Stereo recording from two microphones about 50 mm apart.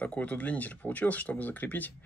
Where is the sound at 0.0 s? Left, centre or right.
Left.